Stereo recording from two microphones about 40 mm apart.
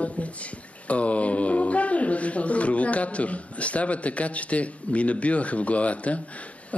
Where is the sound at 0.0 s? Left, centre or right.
Left.